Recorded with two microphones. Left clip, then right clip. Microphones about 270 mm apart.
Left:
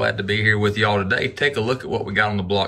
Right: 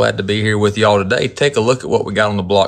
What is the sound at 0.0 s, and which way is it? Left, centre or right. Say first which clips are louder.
Speech: right 4 dB; centre.